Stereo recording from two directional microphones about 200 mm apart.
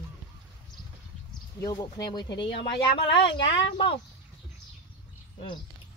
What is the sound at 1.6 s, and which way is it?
Speech, 20° left (ahead or behind).